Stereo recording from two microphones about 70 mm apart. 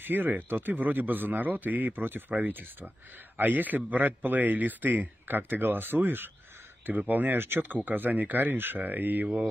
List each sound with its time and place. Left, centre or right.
0.0 s a man's voice: right